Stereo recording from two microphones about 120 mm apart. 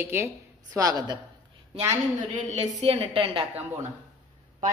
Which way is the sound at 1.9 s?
75° right (ahead or behind).